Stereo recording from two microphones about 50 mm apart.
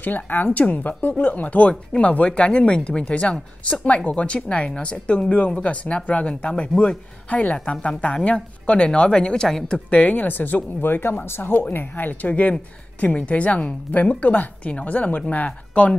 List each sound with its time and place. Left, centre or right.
0.0 s a woman's voice: left; by 9.8 s centre
9.8 s speech: left